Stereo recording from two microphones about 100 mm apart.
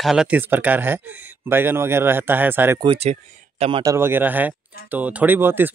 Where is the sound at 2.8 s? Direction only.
90° right.